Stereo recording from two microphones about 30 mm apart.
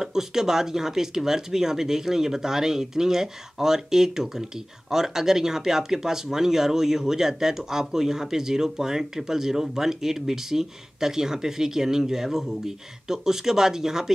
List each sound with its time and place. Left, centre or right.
0.0 s speech: centre